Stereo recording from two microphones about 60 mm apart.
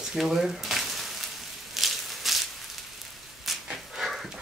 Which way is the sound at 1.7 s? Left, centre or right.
Centre.